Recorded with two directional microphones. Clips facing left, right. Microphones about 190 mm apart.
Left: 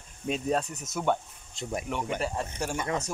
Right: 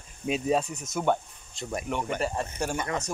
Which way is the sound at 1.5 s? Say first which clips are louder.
Even; 15° left (ahead or behind).